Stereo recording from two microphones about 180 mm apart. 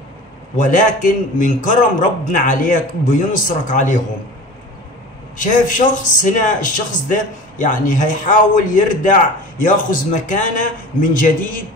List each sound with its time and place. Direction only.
0.6 s a man's voice: 45° left (ahead or behind)
5.4 s a man's voice: 45° left (ahead or behind)